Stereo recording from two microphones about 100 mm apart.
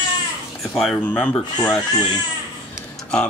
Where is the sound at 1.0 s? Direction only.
15° left (ahead or behind).